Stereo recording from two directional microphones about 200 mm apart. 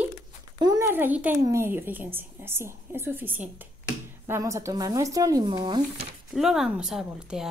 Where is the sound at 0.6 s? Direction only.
15° right (ahead or behind).